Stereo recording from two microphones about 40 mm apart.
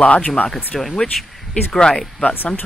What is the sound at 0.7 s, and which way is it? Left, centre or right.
Speech, centre.